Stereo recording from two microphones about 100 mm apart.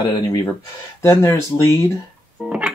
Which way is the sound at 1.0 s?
30° left (ahead or behind).